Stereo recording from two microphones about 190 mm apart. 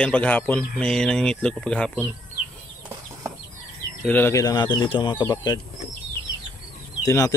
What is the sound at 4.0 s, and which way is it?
Speech, 10° left (ahead or behind).